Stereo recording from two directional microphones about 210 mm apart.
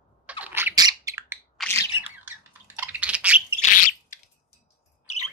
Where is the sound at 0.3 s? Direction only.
10° right (ahead or behind).